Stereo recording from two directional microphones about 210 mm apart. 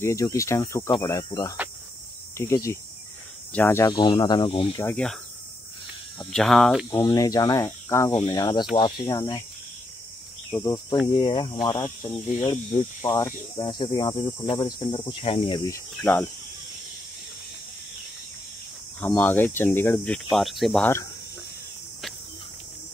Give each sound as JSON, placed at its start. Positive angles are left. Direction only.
{"t": 0.0, "sound": "speech", "side_deg": 15}
{"t": 4.8, "sound": "speech", "side_deg": 5}
{"t": 6.9, "sound": "speech", "side_deg": 20}
{"t": 10.5, "sound": "speech", "side_deg": 15}
{"t": 16.0, "sound": "speech", "side_deg": 5}
{"t": 18.9, "sound": "speech", "side_deg": 10}
{"t": 20.2, "sound": "speech", "side_deg": 0}